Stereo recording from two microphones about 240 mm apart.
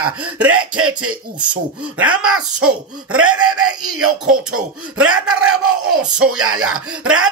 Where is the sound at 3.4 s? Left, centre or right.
Right.